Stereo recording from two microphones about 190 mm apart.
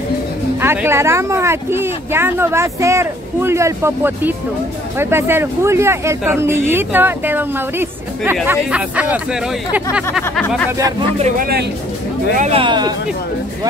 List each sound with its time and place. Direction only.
0.6 s speech: 10° right (ahead or behind)
11.1 s speech: 40° right (ahead or behind)